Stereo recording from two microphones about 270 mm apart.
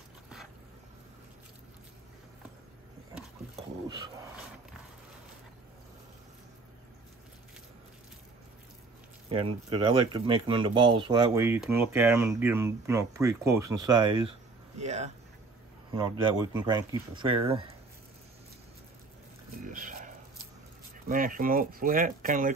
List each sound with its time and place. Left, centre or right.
9.3 s speech: centre
19.6 s a sound: right
21.1 s speech: right